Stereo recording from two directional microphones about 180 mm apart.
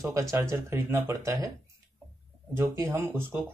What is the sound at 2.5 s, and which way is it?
Speech, 15° right (ahead or behind).